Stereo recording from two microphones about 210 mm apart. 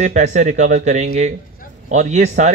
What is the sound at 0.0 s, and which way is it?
Speech, 35° right (ahead or behind).